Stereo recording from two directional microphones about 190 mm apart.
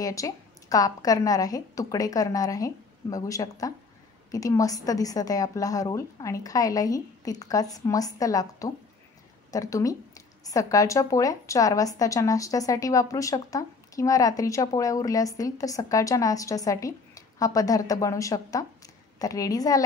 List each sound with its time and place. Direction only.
0.0 s a woman's voice: 15° left (ahead or behind)